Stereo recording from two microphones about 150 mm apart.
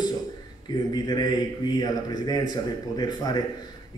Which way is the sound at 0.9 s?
25° left (ahead or behind).